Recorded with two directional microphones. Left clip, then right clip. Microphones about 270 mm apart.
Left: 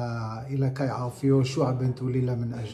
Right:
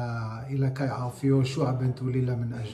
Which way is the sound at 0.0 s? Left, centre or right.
Centre.